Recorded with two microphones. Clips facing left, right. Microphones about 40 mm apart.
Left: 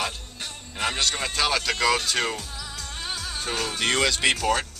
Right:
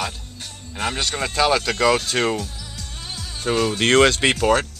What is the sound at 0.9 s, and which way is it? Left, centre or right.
Speech, centre.